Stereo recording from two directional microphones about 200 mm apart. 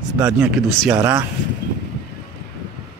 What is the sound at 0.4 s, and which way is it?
Speech, 10° right (ahead or behind).